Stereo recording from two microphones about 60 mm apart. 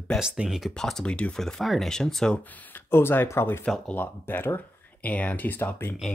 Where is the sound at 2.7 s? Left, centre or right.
Left.